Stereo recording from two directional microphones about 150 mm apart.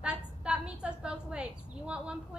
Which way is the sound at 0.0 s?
5° right (ahead or behind).